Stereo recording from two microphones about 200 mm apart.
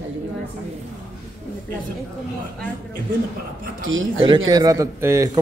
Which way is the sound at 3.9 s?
75° right (ahead or behind).